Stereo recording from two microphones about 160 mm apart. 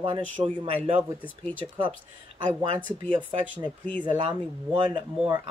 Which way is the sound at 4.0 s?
30° right (ahead or behind).